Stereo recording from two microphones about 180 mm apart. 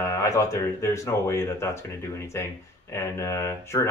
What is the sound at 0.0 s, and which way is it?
Speech, 15° left (ahead or behind).